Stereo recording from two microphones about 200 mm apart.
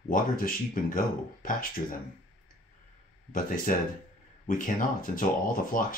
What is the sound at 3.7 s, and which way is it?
Speech, 40° left (ahead or behind).